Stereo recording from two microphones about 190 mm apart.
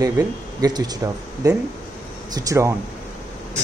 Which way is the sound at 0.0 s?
20° right (ahead or behind).